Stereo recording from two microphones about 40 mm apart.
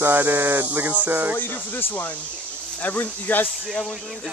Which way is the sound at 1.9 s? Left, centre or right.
Left.